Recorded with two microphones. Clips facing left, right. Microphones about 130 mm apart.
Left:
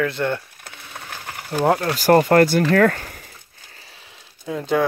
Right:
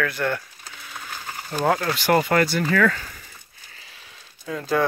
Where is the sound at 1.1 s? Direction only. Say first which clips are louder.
Left 3 dB; 65° left (ahead or behind).